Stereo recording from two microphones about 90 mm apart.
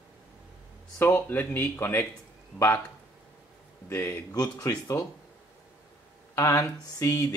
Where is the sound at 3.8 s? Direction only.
30° left (ahead or behind).